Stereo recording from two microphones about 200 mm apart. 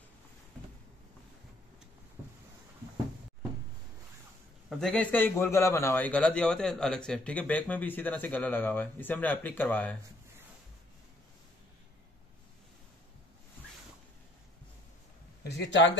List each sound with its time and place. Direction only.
4.6 s a man's voice: 5° left (ahead or behind)
15.4 s speech: 60° left (ahead or behind)